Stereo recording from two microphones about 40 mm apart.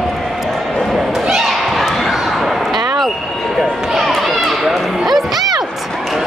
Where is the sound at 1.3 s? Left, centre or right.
Centre.